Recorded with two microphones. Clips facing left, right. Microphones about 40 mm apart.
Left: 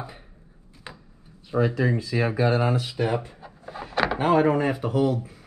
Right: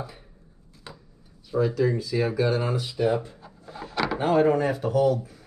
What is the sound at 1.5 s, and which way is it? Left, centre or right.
Speech, left.